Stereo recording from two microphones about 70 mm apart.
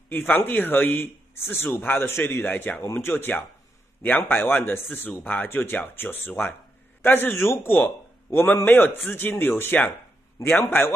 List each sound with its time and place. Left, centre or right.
0.1 s a man's voice: left
2.4 s a man's voice: left
2.8 s a man's voice: left
10.4 s a man's voice: left
10.8 s a man's voice: left